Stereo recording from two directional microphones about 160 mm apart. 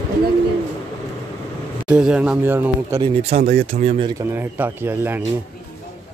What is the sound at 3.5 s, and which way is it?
Speech, 40° right (ahead or behind).